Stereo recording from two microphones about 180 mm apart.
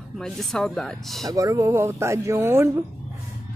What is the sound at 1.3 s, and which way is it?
Speech, 15° right (ahead or behind).